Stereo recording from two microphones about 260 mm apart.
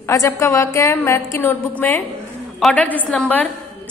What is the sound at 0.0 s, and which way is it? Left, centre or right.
A woman's voice, centre.